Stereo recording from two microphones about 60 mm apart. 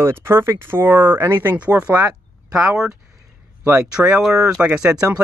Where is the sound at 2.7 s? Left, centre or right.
Centre.